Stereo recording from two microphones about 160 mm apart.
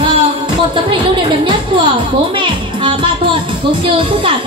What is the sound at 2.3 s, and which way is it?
Music, 30° right (ahead or behind).